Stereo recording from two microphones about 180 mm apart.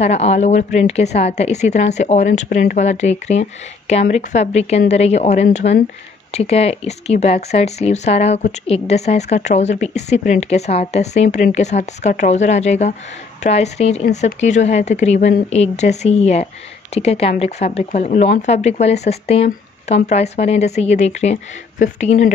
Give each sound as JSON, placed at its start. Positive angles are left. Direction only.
{"t": 0.0, "sound": "speech", "side_deg": 35}